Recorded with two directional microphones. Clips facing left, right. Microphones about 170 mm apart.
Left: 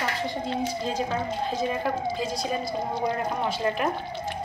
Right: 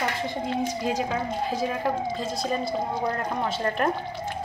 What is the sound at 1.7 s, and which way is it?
Speech, centre (ahead or behind).